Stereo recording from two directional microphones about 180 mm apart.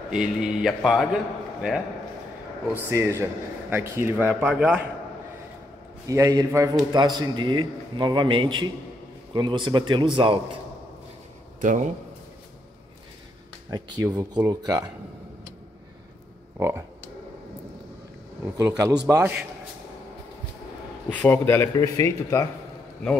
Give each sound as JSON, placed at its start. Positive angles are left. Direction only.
{"t": 0.1, "sound": "a man's voice", "side_deg": -5}
{"t": 2.7, "sound": "speech", "side_deg": -15}
{"t": 6.0, "sound": "a man's voice", "side_deg": -15}
{"t": 11.6, "sound": "speech", "side_deg": -40}
{"t": 13.7, "sound": "a man's voice", "side_deg": -20}
{"t": 16.5, "sound": "frog", "side_deg": -15}
{"t": 18.6, "sound": "speech", "side_deg": -15}
{"t": 21.1, "sound": "speech", "side_deg": 10}